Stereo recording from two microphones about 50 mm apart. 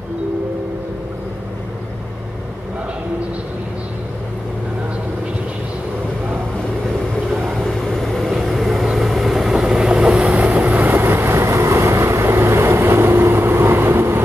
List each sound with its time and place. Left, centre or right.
7.5 s vehicle: centre; by 14.2 s right